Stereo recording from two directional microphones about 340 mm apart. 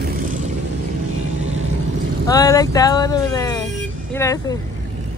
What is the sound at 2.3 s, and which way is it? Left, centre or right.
Speech, centre.